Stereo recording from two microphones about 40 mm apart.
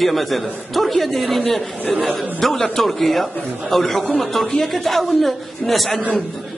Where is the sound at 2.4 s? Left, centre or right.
Centre.